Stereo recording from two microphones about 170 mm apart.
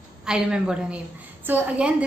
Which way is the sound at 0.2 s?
5° right (ahead or behind).